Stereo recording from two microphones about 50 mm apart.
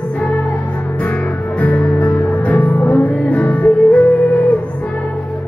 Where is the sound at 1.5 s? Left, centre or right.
Left.